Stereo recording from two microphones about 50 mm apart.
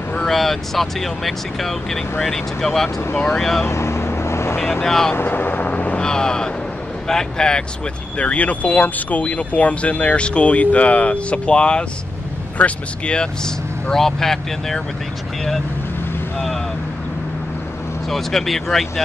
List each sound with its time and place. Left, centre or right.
0.3 s speech: centre
3.6 s vehicle: left
4.8 s speech: centre
5.1 s vehicle: left
5.9 s speech: centre
8.2 s speech: left; by 14.8 s centre
18.0 s speech: centre